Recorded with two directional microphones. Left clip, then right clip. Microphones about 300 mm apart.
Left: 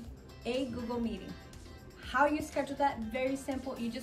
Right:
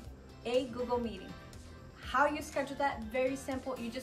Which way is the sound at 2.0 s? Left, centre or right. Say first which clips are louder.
Left 1 dB; centre.